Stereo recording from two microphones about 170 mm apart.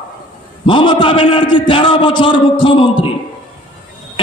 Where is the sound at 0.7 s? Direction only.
25° left (ahead or behind).